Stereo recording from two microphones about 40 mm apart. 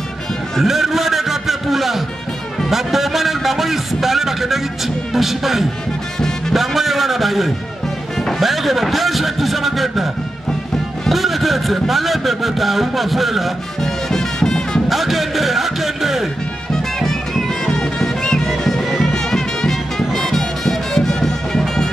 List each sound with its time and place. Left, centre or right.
0.6 s a sound: centre
2.7 s speech: centre
11.1 s speech: centre
14.1 s music: centre
14.9 s speech: centre
16.7 s music: centre